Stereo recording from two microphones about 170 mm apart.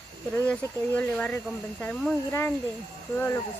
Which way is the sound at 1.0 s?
10° left (ahead or behind).